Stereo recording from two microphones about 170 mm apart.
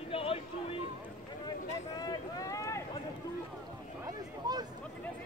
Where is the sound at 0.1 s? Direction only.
35° left (ahead or behind).